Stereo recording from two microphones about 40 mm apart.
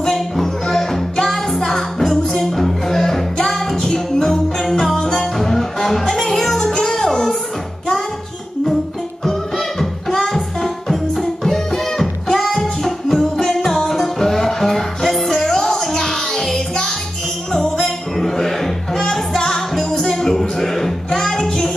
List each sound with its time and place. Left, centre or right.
0.0 s music: centre
9.2 s music: centre